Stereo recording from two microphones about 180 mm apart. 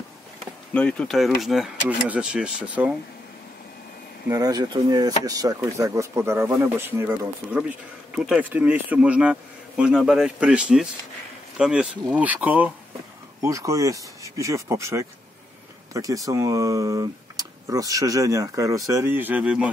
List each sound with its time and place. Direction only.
0.7 s speech: 5° left (ahead or behind)
4.3 s speech: 20° right (ahead or behind)